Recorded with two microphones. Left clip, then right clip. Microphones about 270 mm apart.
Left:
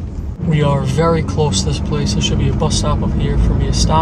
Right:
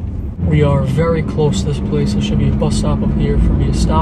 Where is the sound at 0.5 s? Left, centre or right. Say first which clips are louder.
Right 1 dB; centre.